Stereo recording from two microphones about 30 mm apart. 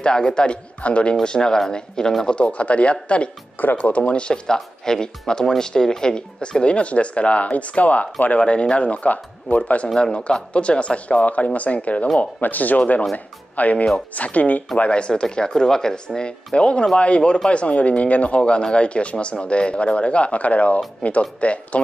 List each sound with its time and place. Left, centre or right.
0.0 s speech: left
0.8 s speech: left
1.2 s speech: left
2.2 s speech: left
3.5 s speech: left
4.3 s speech: centre; by 6.5 s left
6.6 s speech: left
8.4 s speech: left
10.5 s speech: left
12.4 s speech: left
14.9 s speech: left
15.5 s speech: centre
16.5 s speech: left
18.6 s speech: left